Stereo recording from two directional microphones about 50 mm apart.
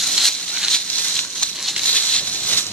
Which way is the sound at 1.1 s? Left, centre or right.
Centre.